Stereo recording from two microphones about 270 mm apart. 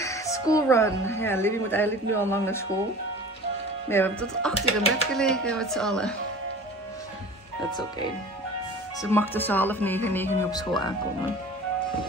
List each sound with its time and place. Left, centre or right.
0.0 s speech: centre
3.9 s speech: centre
4.6 s speech: left
5.1 s speech: centre
9.0 s speech: centre